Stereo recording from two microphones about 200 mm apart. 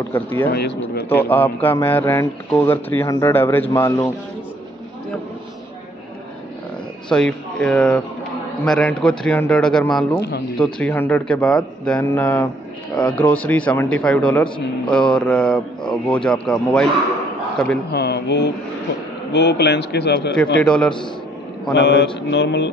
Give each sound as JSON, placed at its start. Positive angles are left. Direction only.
{"t": 0.1, "sound": "speech", "side_deg": 10}
{"t": 0.5, "sound": "mantra", "side_deg": 55}
{"t": 1.1, "sound": "speech", "side_deg": 10}
{"t": 7.1, "sound": "a man's voice", "side_deg": 5}
{"t": 10.1, "sound": "mantra", "side_deg": 55}
{"t": 10.6, "sound": "a man's voice", "side_deg": 5}
{"t": 17.9, "sound": "mantra", "side_deg": 55}
{"t": 20.6, "sound": "a man's voice", "side_deg": 5}
{"t": 21.7, "sound": "mantra", "side_deg": 60}